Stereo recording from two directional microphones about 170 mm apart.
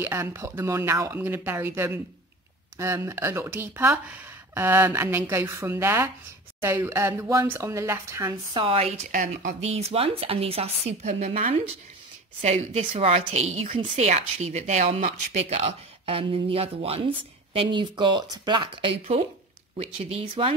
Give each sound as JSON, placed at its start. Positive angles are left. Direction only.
{"t": 0.0, "sound": "speech", "side_deg": -15}
{"t": 8.5, "sound": "a woman's voice", "side_deg": -35}
{"t": 9.1, "sound": "speech", "side_deg": -50}
{"t": 9.8, "sound": "a woman's voice", "side_deg": -35}